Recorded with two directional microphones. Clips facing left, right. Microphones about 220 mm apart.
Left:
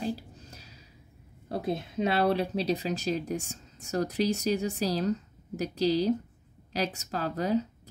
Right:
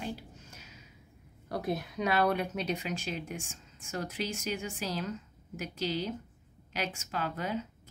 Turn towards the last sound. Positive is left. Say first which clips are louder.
# left 6 dB
turn(degrees=35)  # may be behind; listen again after turning